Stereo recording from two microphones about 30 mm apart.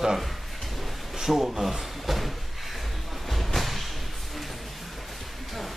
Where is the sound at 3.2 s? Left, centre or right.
Centre.